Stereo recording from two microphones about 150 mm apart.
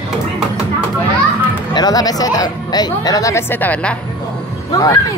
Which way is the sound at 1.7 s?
25° left (ahead or behind).